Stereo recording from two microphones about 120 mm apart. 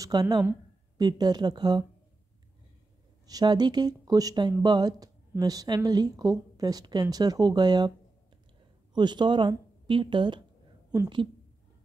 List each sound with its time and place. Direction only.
0.0 s a woman's voice: 35° right (ahead or behind)
3.3 s a woman's voice: 35° right (ahead or behind)
8.9 s speech: 40° right (ahead or behind)